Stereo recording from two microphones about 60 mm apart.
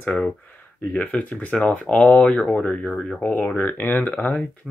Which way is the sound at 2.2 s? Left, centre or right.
Centre.